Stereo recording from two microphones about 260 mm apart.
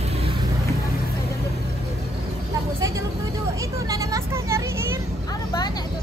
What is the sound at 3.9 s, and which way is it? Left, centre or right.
Vehicle, centre.